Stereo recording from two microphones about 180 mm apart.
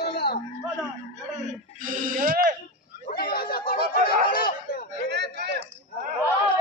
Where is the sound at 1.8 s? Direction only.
50° right (ahead or behind).